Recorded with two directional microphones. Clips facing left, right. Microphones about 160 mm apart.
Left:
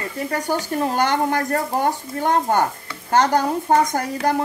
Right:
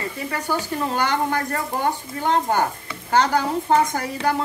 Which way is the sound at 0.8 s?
50° left (ahead or behind).